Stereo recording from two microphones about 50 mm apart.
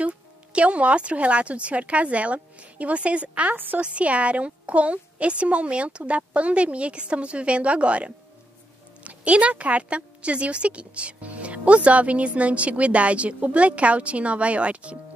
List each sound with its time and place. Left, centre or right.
0.0 s a woman's voice: right
3.5 s speech: right
3.8 s a woman's voice: right